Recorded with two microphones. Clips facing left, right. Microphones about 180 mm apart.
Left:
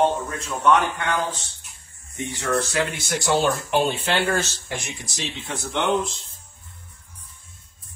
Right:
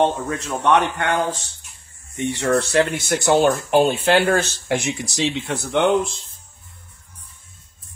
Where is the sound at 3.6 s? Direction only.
45° right (ahead or behind); by 5.9 s 65° right (ahead or behind).